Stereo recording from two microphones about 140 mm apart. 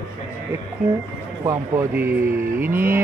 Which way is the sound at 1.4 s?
20° right (ahead or behind).